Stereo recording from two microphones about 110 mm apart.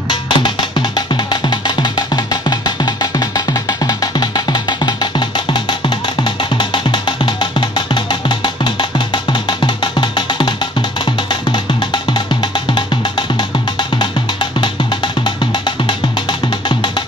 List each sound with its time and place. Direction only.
0.1 s music: 45° left (ahead or behind)